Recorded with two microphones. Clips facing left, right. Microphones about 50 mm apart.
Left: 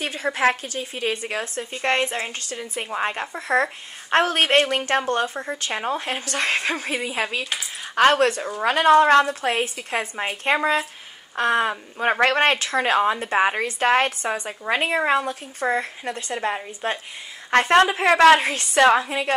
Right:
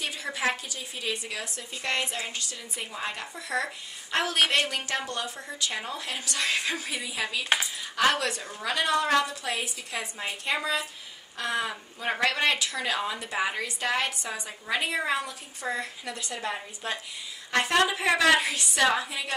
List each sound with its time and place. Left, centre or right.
0.0 s a woman's voice: left